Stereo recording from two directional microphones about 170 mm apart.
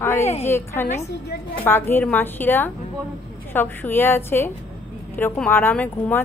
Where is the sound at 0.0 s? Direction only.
15° left (ahead or behind).